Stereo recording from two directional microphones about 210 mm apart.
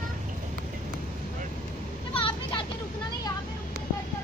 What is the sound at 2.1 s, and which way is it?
Vehicle, 25° left (ahead or behind).